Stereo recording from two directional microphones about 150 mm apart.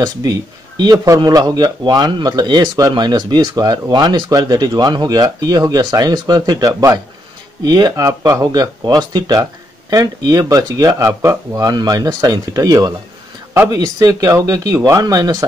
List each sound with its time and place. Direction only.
0.0 s speech: 25° right (ahead or behind)